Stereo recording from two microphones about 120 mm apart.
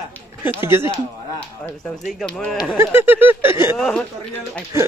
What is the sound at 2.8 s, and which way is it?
Speech, 20° right (ahead or behind).